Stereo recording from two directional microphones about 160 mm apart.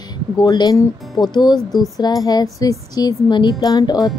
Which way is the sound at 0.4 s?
25° left (ahead or behind).